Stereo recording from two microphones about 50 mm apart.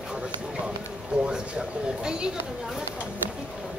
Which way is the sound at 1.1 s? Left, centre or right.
Centre.